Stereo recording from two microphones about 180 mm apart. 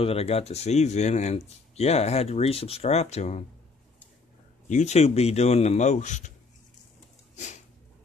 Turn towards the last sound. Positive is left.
turn(degrees=40)  # may be behind; listen again after turning